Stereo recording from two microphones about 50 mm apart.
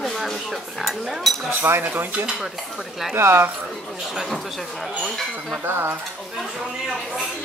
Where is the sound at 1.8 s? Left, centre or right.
Right.